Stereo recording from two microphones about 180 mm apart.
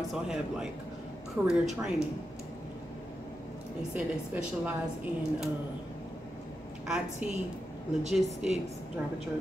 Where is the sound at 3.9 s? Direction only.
10° right (ahead or behind).